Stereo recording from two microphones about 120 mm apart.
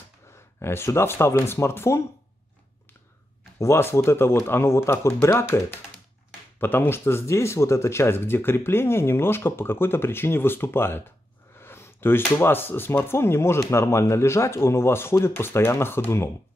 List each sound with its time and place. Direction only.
0.6 s speech: 20° left (ahead or behind)
3.5 s speech: 20° left (ahead or behind)
6.6 s speech: 15° left (ahead or behind)